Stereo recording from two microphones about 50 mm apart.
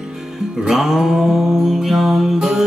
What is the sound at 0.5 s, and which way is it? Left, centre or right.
Mantra, centre.